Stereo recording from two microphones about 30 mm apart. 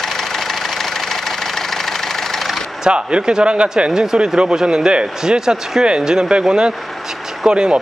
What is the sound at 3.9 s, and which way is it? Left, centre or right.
Speech, right.